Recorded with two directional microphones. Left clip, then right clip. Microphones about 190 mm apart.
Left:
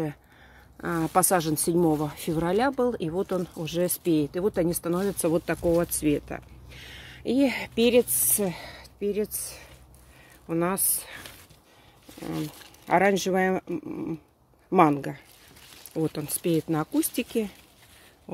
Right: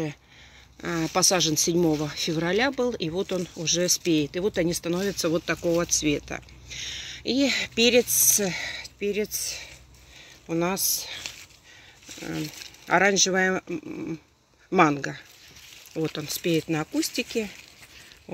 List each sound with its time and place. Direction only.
0.7 s speech: 5° left (ahead or behind)
5.2 s speech: 15° left (ahead or behind)
12.2 s speech: 10° left (ahead or behind)
17.0 s speech: 20° left (ahead or behind)